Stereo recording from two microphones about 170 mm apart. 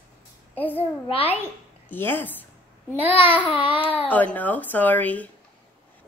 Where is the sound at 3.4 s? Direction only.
30° left (ahead or behind).